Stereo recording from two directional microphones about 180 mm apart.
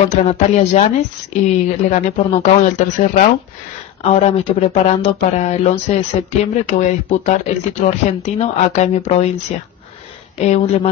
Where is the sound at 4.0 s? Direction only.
35° left (ahead or behind).